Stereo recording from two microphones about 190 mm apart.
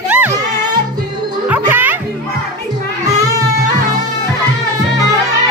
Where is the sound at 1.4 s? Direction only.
10° right (ahead or behind).